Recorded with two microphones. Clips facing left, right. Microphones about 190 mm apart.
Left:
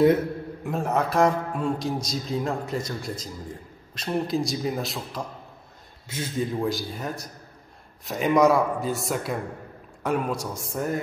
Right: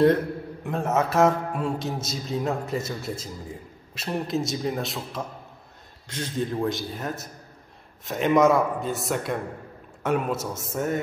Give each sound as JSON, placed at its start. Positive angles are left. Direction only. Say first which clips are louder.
{"t": 0.7, "sound": "a man's voice", "louder": "right 1 dB", "side_deg": 0}